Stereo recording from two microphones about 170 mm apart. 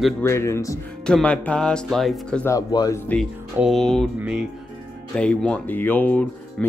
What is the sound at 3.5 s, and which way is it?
Speech, centre (ahead or behind).